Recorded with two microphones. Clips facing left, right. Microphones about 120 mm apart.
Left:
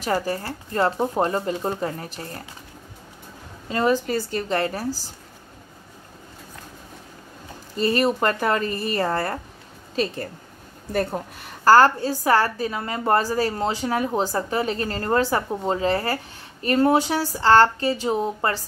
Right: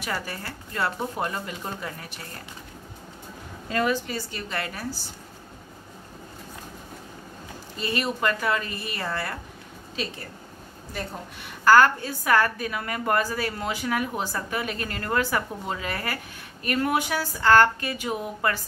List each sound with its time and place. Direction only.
0.0 s a woman's voice: 35° left (ahead or behind)
3.6 s a woman's voice: 25° left (ahead or behind)
3.9 s a woman's voice: 40° left (ahead or behind)
7.7 s a woman's voice: 40° left (ahead or behind)
10.9 s speech: 50° left (ahead or behind)
11.6 s a woman's voice: 35° left (ahead or behind)